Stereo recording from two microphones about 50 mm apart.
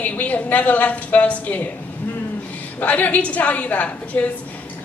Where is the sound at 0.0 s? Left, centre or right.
Left.